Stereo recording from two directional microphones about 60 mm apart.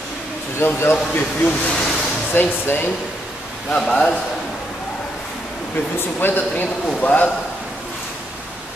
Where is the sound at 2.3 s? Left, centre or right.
Left.